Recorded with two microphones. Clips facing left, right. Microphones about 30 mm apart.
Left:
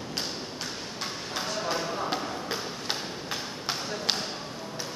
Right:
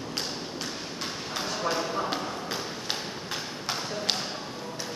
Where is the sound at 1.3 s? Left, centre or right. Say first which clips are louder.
Right 1 dB; centre.